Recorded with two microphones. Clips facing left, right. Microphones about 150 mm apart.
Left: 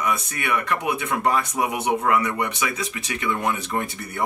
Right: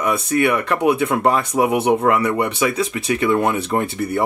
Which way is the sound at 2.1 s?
30° right (ahead or behind).